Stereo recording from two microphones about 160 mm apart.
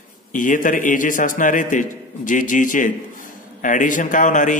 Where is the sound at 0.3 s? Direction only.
55° left (ahead or behind).